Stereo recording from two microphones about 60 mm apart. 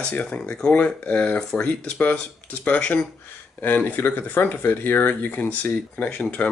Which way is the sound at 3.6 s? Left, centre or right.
Left.